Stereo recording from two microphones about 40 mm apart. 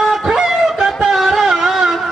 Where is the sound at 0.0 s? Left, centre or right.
Centre.